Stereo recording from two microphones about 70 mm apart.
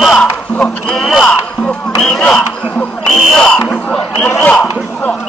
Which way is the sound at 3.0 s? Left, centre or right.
Centre.